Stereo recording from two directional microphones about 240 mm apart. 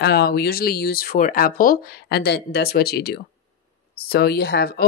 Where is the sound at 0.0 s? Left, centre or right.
Left.